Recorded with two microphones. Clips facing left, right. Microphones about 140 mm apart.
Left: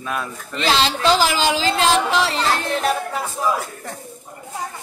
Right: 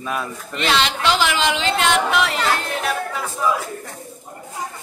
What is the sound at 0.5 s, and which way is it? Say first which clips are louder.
Speech: left 1 dB; 30° left (ahead or behind).